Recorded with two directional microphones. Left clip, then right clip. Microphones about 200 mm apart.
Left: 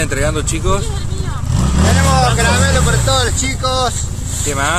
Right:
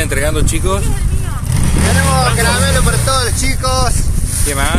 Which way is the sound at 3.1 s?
Centre (ahead or behind).